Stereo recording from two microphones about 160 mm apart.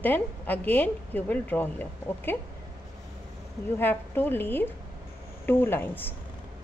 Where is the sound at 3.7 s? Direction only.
10° left (ahead or behind).